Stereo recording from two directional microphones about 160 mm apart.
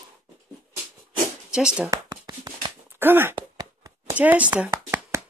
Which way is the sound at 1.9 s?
20° right (ahead or behind).